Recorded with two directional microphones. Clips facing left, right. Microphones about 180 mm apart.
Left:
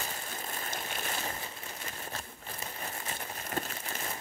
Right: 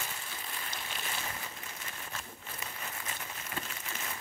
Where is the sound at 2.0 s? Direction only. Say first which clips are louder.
Left 3 dB; 35° left (ahead or behind).